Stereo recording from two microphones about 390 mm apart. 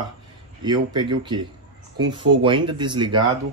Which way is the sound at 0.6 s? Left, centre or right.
Centre.